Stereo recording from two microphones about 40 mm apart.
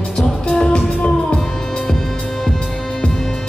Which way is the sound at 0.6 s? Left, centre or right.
Left.